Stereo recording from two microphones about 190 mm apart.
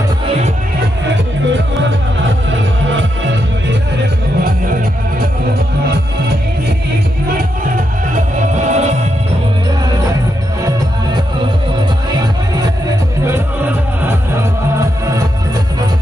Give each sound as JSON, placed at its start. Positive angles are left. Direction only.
{"t": 8.1, "sound": "music", "side_deg": -40}